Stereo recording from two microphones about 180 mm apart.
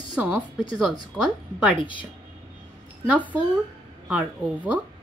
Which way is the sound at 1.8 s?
25° left (ahead or behind).